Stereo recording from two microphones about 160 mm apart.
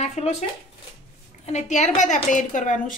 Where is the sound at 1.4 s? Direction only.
45° left (ahead or behind).